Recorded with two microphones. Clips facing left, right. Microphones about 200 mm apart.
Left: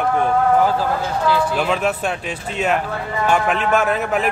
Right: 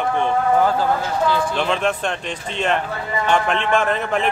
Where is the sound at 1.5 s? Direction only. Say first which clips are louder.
Left 1 dB; 5° left (ahead or behind).